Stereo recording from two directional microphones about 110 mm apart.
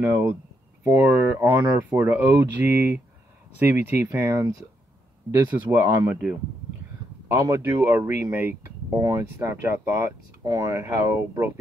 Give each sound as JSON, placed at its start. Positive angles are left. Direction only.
{"t": 0.0, "sound": "speech", "side_deg": -20}
{"t": 5.7, "sound": "speech", "side_deg": -20}
{"t": 7.2, "sound": "speech", "side_deg": -30}